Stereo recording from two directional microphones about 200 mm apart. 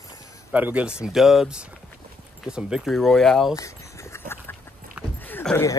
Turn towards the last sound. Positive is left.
turn(degrees=10)  # may be behind; listen again after turning